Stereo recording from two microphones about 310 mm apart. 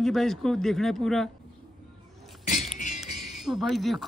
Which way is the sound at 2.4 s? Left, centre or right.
Left.